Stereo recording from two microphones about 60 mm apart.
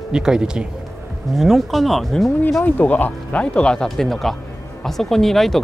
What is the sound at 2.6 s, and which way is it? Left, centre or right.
Speech, left.